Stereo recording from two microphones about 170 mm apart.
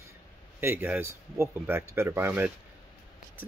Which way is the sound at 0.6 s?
10° right (ahead or behind).